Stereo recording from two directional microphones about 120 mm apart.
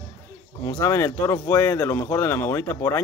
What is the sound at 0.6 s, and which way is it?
Speech, 25° left (ahead or behind).